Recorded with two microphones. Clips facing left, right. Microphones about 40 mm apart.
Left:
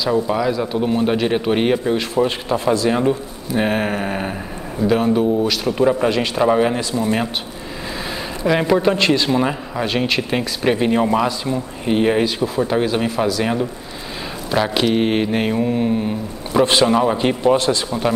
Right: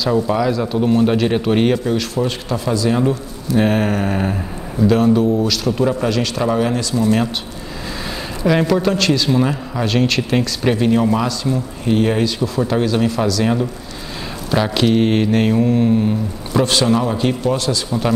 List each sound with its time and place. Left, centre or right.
0.1 s a man's voice: centre
2.0 s speech: left
3.0 s a man's voice: centre
8.6 s a man's voice: centre